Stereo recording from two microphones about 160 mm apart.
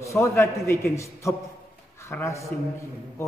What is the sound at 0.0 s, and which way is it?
A man's voice, 20° left (ahead or behind).